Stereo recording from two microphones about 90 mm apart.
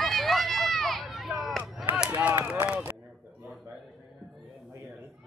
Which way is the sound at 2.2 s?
15° right (ahead or behind).